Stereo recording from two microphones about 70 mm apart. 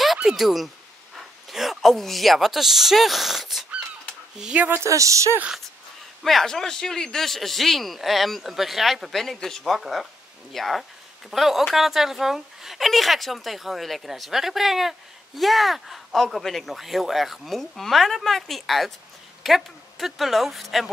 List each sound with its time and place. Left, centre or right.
0.0 s a sound: centre
1.1 s speech: centre
4.8 s speech: right
6.2 s speech: centre